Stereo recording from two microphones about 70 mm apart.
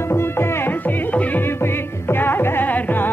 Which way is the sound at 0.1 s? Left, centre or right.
Left.